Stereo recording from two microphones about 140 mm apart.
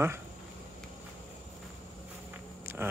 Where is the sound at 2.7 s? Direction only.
15° right (ahead or behind).